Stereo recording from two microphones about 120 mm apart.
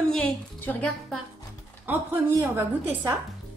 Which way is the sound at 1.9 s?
15° right (ahead or behind).